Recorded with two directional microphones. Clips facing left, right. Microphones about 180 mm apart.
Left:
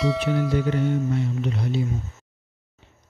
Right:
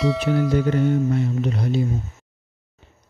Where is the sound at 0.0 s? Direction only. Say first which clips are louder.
Right 2 dB; centre (ahead or behind).